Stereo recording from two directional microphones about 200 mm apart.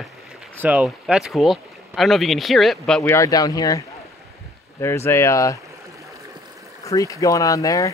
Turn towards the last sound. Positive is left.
turn(degrees=15)  # may be behind; listen again after turning